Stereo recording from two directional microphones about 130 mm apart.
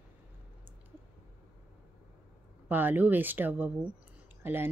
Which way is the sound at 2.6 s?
15° right (ahead or behind).